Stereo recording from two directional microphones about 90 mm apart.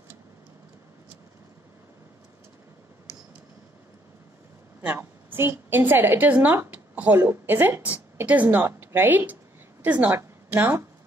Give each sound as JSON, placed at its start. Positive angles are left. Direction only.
{"t": 4.8, "sound": "a woman's voice", "side_deg": -25}